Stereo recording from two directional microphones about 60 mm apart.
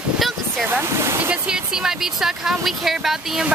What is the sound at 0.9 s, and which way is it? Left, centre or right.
Speech, right.